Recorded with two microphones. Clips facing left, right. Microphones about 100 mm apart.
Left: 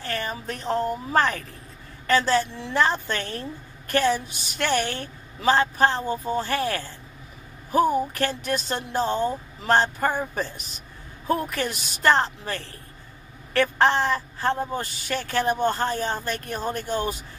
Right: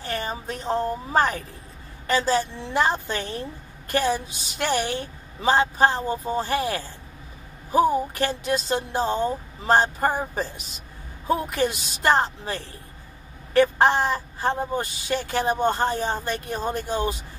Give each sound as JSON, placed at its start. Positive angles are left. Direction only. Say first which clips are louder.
{"t": 0.0, "sound": "speech", "louder": "right 1 dB", "side_deg": -20}
{"t": 9.9, "sound": "speech", "louder": "right 1 dB", "side_deg": -30}
{"t": 11.2, "sound": "speech", "louder": "right 2 dB", "side_deg": -15}